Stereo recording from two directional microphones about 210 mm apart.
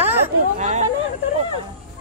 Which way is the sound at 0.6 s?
35° right (ahead or behind).